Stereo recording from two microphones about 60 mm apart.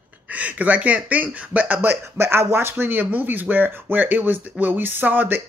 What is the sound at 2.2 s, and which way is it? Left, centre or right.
Speech, right.